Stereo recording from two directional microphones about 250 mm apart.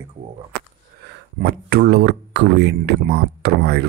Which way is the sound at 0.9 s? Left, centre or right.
Right.